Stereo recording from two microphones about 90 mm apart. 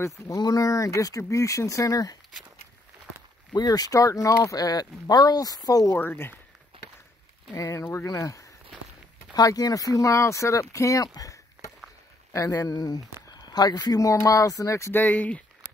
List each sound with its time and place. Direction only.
0.4 s speech: 45° left (ahead or behind)
3.5 s speech: 45° left (ahead or behind)
4.6 s speech: 45° left (ahead or behind)
5.9 s speech: 25° left (ahead or behind)
6.7 s walk: 75° right (ahead or behind)
7.5 s speech: 35° left (ahead or behind); by 15.4 s 15° left (ahead or behind)